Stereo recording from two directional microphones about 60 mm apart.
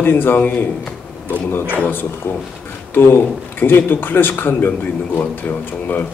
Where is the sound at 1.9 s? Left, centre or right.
Left.